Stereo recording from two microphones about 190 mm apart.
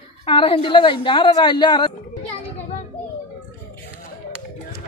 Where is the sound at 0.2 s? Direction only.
30° left (ahead or behind).